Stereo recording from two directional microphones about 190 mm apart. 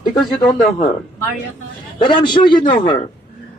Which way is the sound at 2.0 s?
25° left (ahead or behind).